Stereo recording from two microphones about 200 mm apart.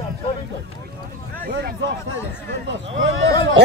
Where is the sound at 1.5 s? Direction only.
55° right (ahead or behind).